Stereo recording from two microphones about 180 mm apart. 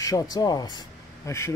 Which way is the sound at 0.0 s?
20° left (ahead or behind).